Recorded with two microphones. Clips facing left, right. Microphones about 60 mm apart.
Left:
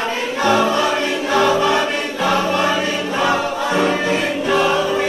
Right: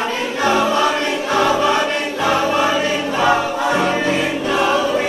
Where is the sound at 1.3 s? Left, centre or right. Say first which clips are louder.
Even; centre.